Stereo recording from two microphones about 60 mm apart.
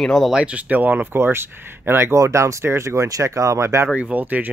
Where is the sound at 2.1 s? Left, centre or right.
Right.